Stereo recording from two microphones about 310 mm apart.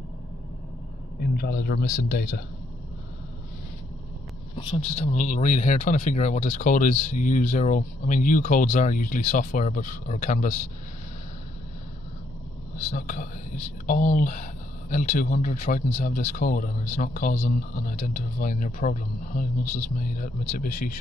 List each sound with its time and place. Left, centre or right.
1.2 s speech: left
4.6 s speech: centre
12.7 s speech: left